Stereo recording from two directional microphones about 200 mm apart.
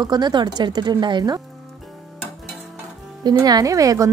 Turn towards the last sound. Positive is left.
turn(degrees=-15)  # may be behind; listen again after turning